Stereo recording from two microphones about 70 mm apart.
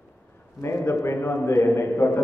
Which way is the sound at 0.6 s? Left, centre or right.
Left.